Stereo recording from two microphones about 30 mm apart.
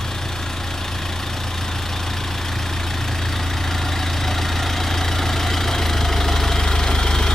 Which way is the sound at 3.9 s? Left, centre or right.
Centre.